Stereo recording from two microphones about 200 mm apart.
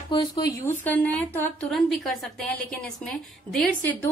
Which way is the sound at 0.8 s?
10° left (ahead or behind).